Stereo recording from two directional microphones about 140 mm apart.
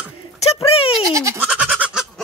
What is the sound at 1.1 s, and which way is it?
Goat, 20° right (ahead or behind).